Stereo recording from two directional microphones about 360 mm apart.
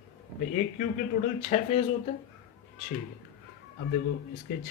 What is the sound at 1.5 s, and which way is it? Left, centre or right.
Speech, centre.